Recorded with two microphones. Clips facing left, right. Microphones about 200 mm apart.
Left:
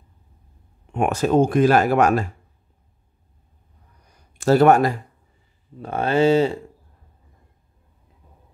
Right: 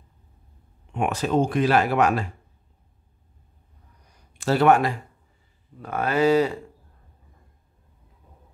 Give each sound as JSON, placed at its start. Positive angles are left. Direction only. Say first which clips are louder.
{"t": 0.9, "sound": "speech", "louder": "left 5 dB", "side_deg": 45}
{"t": 4.4, "sound": "speech", "louder": "left 4 dB", "side_deg": 45}
{"t": 5.8, "sound": "speech", "louder": "left 3 dB", "side_deg": 30}